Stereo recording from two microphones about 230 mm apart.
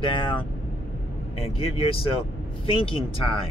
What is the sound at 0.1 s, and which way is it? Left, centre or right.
Speech, left.